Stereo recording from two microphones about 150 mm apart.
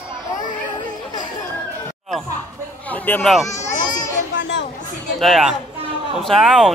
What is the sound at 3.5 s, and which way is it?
Children playing, 55° left (ahead or behind).